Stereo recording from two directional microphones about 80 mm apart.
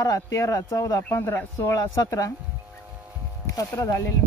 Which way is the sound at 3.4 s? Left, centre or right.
Left.